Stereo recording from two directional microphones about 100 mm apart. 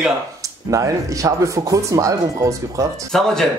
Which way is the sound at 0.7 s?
35° right (ahead or behind).